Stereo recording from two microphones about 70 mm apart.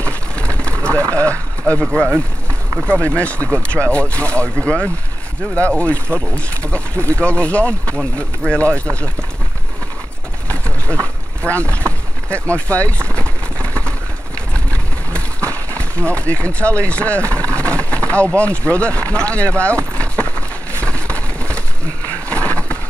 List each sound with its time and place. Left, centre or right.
0.6 s vehicle: centre
1.1 s speech: centre
2.9 s speech: centre
10.5 s boat: centre
11.7 s a sound: centre
14.5 s vehicle: centre
15.8 s speech: centre
20.8 s a sound: centre